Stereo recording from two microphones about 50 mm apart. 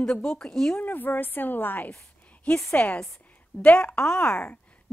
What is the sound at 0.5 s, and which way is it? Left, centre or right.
Speech, centre.